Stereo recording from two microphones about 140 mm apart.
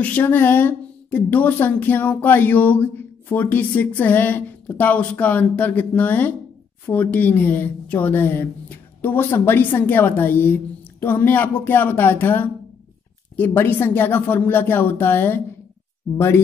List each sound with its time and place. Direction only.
0.0 s a woman's voice: 10° left (ahead or behind)